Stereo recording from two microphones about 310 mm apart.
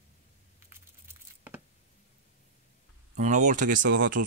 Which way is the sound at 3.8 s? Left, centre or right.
Right.